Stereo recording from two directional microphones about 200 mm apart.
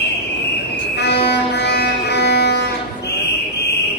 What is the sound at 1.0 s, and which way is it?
Music, 55° left (ahead or behind).